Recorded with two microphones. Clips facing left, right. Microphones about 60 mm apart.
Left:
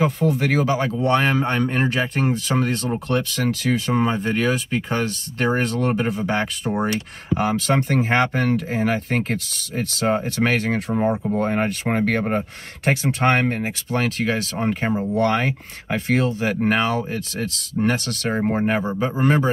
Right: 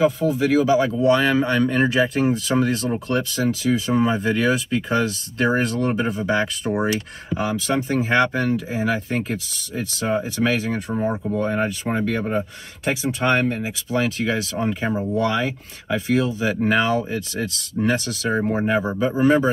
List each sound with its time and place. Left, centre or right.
0.0 s speech: left
5.6 s speech: left
6.6 s speech: centre
7.3 s speech: left
19.2 s speech: left